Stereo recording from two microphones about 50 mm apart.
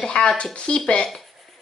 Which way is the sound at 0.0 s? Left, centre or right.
Centre.